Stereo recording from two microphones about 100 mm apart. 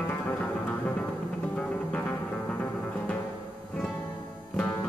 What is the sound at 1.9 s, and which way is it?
Music, 15° left (ahead or behind).